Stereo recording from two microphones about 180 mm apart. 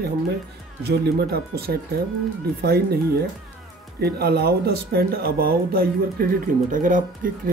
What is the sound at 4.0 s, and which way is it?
Speech, 60° right (ahead or behind).